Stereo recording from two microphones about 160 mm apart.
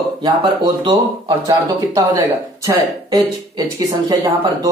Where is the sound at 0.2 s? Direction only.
25° right (ahead or behind).